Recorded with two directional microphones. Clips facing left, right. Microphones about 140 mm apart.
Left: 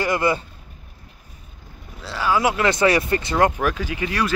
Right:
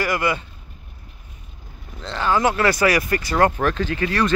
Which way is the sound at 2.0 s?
10° left (ahead or behind).